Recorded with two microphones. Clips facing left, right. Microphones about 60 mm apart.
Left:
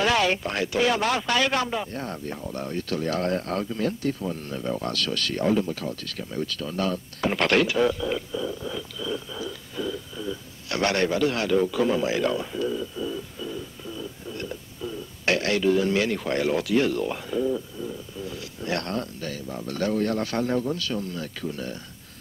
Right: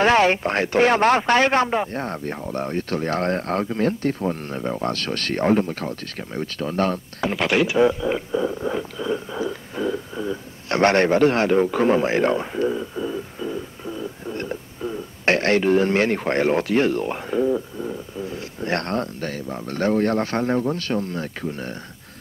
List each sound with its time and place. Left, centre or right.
0.0 s speech: right
7.2 s speech: centre
7.6 s speech: right